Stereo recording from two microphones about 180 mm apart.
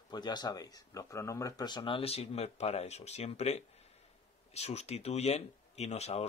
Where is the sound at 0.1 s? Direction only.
25° left (ahead or behind).